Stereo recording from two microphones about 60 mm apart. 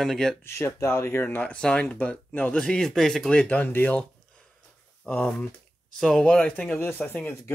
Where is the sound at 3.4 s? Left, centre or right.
Left.